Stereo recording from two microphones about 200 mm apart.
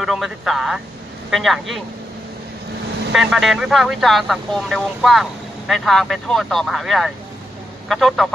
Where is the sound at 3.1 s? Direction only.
Centre (ahead or behind).